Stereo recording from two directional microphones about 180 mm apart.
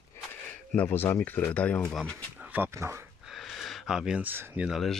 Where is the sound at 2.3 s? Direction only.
10° right (ahead or behind).